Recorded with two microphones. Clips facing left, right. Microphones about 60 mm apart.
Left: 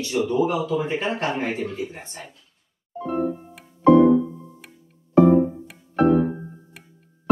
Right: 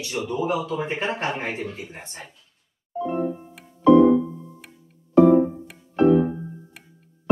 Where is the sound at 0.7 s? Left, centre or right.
Right.